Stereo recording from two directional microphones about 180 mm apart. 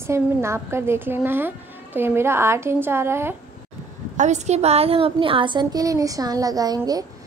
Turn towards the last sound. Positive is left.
turn(degrees=-20)  # may be behind; listen again after turning